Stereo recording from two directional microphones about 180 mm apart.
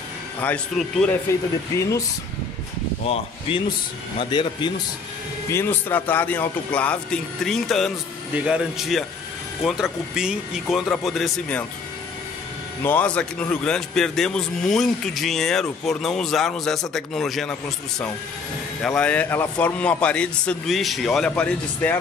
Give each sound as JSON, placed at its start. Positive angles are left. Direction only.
{"t": 0.4, "sound": "a man's voice", "side_deg": 5}
{"t": 1.7, "sound": "a man's voice", "side_deg": 15}
{"t": 3.1, "sound": "speech", "side_deg": 30}
{"t": 5.5, "sound": "a man's voice", "side_deg": 15}
{"t": 12.8, "sound": "a man's voice", "side_deg": 10}